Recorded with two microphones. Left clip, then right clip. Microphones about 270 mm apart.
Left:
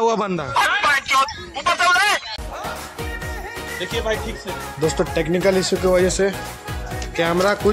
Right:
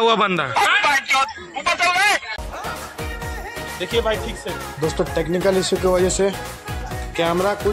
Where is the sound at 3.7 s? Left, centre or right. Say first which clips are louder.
Right 3 dB; right.